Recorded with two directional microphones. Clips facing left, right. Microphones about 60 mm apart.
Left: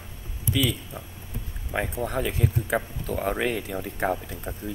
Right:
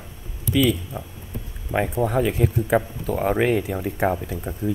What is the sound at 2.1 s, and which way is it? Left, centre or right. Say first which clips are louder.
Speech: right 6 dB; centre.